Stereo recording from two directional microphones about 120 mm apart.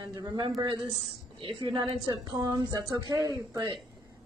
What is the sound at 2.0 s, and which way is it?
Speech, 30° right (ahead or behind).